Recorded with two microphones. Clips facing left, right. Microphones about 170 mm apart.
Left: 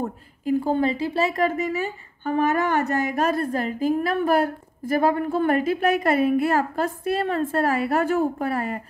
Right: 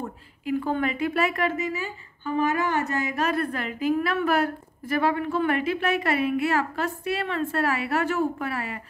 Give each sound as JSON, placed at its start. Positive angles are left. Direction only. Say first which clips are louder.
{"t": 0.0, "sound": "speech", "louder": "left 5 dB", "side_deg": 40}
{"t": 1.6, "sound": "a woman's voice", "louder": "left 4 dB", "side_deg": 55}